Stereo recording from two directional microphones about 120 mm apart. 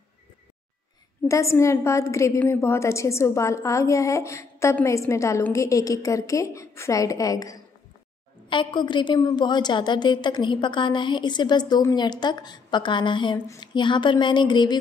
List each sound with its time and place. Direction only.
1.2 s a woman's voice: 25° left (ahead or behind)
8.5 s a woman's voice: 40° left (ahead or behind)